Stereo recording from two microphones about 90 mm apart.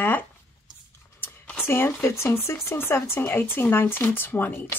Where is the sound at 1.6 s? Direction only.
30° left (ahead or behind).